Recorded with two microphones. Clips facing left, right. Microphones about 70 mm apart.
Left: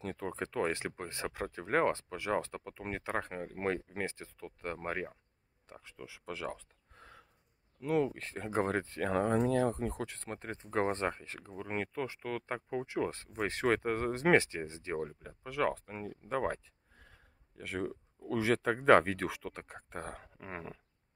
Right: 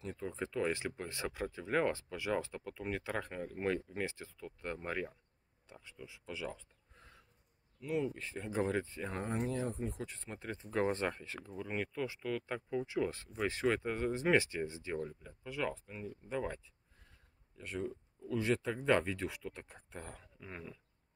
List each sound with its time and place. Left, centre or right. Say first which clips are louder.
0.0 s speech: left 3 dB; left
5.7 s speech: left 3 dB; left
6.3 s a sound: left 2 dB; left
7.8 s speech: left 5 dB; left
8.1 s speech: left 3 dB; left
15.4 s speech: left 6 dB; left
17.6 s speech: left 3 dB; left